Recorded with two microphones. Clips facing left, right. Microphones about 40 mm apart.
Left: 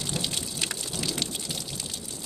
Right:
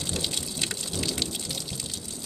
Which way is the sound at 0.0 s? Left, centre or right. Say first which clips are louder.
Even; left.